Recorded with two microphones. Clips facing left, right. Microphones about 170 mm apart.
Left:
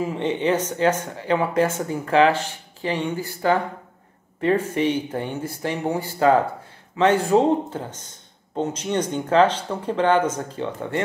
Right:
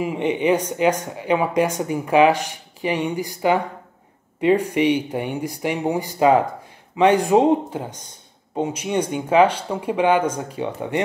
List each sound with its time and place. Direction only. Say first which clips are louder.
0.0 s speech: right 2 dB; 15° right (ahead or behind)